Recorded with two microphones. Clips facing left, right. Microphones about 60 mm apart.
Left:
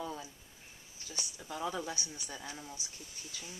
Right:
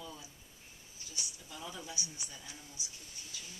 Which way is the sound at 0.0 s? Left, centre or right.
Left.